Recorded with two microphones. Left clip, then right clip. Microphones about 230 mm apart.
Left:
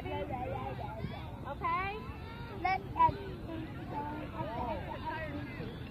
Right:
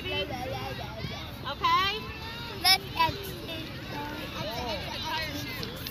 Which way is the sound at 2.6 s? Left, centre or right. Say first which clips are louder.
Right 5 dB; right.